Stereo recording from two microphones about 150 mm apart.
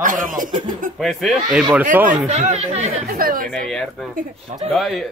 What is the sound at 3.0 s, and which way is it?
Speech, 75° right (ahead or behind).